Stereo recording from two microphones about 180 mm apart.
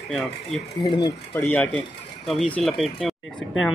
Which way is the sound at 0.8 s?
25° left (ahead or behind).